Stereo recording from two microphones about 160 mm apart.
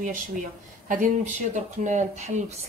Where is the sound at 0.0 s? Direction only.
55° right (ahead or behind).